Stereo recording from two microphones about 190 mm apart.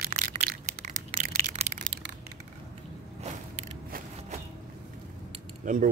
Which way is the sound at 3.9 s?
50° right (ahead or behind).